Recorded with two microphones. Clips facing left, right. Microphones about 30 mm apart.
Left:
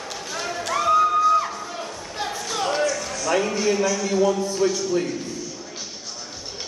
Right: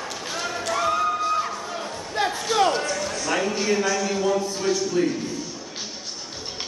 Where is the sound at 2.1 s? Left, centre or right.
Centre.